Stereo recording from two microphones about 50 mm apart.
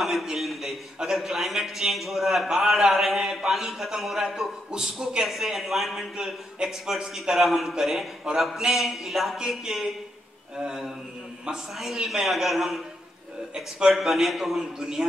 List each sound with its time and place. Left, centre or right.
0.0 s a man's voice: centre
4.6 s a man's voice: centre
6.6 s speech: centre
7.2 s a man's voice: centre